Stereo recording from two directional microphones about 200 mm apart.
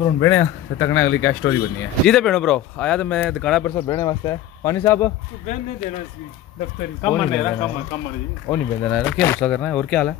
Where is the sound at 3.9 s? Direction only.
15° left (ahead or behind).